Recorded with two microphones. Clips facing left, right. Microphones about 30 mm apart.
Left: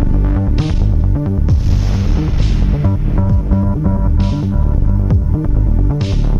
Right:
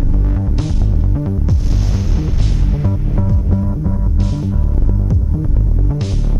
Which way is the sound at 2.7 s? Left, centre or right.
Centre.